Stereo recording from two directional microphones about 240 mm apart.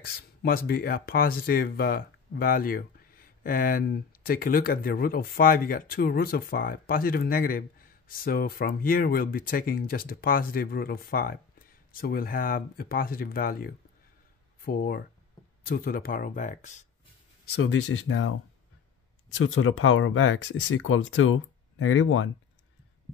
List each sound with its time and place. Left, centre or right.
0.0 s speech: left
17.5 s speech: left
19.3 s speech: left